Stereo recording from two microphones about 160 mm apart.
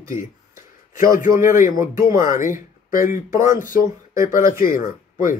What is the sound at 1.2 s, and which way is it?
A man's voice, 55° left (ahead or behind).